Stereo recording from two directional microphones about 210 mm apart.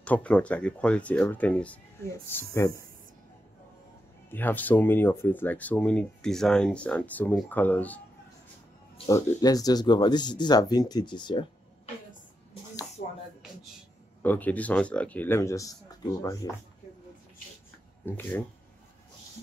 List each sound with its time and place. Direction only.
0.0 s speech: 5° left (ahead or behind)
4.3 s speech: 10° left (ahead or behind)
8.9 s speech: 20° left (ahead or behind)
13.0 s a sound: 40° left (ahead or behind)
14.2 s speech: 10° left (ahead or behind)
18.0 s speech: 10° left (ahead or behind)